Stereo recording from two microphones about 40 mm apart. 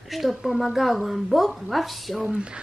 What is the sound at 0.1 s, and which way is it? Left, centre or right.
A woman's voice, centre.